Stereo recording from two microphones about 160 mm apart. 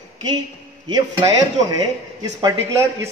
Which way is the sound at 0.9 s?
25° right (ahead or behind).